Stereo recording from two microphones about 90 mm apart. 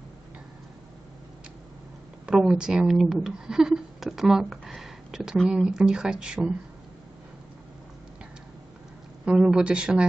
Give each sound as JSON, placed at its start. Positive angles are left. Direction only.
{"t": 2.2, "sound": "speech", "side_deg": -10}
{"t": 9.2, "sound": "speech", "side_deg": -10}